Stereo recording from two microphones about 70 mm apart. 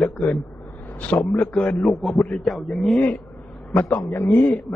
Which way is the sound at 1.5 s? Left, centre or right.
Centre.